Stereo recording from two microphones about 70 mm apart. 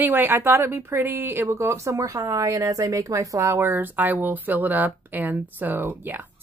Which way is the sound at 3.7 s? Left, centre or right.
Right.